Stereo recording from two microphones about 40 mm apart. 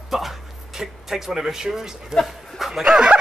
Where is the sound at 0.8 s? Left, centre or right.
Centre.